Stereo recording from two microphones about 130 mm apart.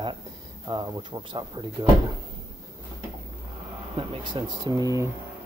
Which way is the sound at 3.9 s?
40° right (ahead or behind).